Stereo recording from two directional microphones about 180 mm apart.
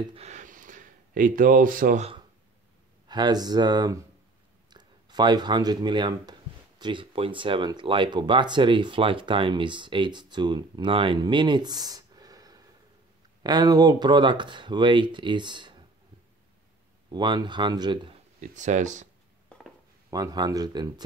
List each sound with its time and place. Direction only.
0.0 s speech: 35° right (ahead or behind); by 2.0 s 50° right (ahead or behind)
3.1 s speech: 25° right (ahead or behind)
17.1 s speech: 25° right (ahead or behind)
18.4 s speech: 40° right (ahead or behind)
20.1 s speech: 20° right (ahead or behind)